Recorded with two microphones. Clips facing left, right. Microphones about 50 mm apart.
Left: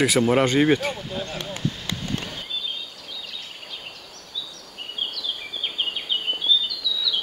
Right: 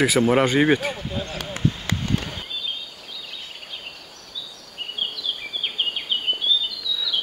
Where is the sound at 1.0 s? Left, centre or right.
Right.